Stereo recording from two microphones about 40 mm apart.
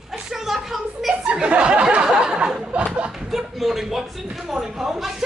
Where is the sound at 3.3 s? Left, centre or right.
Centre.